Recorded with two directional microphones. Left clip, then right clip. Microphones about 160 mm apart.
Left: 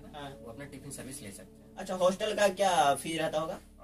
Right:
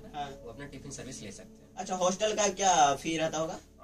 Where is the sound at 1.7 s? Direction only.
5° right (ahead or behind).